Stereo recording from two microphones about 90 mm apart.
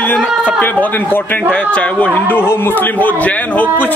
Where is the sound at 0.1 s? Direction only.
20° left (ahead or behind).